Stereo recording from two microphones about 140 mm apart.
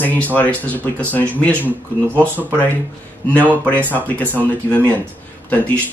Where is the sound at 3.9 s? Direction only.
10° left (ahead or behind).